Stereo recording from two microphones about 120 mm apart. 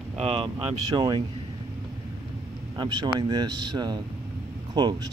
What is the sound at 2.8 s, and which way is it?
Speech, 35° right (ahead or behind).